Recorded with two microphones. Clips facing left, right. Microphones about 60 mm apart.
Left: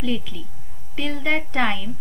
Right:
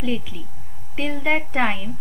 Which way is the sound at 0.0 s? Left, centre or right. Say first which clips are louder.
Even; right.